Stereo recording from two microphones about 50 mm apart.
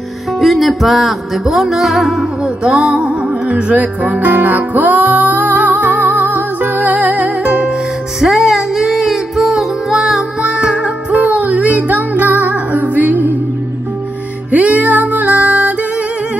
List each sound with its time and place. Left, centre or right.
0.4 s music: centre
3.4 s music: right
8.2 s music: centre
10.4 s music: centre
11.3 s music: right
14.5 s music: right